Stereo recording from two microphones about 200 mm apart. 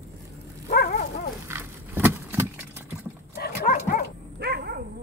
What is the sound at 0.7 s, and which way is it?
Dog, 45° left (ahead or behind).